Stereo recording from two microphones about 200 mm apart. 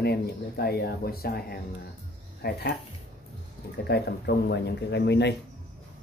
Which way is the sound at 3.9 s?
55° left (ahead or behind).